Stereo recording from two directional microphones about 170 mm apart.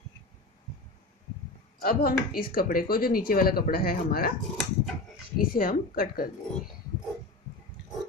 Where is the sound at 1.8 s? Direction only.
60° left (ahead or behind).